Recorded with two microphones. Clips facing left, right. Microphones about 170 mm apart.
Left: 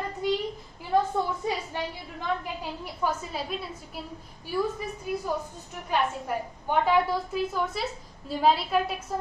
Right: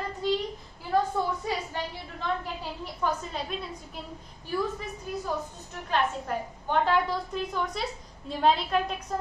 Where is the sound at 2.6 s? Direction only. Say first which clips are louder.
Left 1 dB; 5° left (ahead or behind).